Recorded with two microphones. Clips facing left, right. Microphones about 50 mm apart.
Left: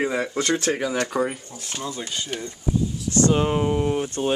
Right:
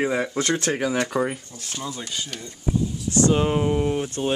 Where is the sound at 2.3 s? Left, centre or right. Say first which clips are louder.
Left 5 dB; left.